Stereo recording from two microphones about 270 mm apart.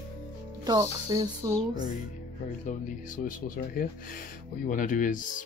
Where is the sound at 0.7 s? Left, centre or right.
Centre.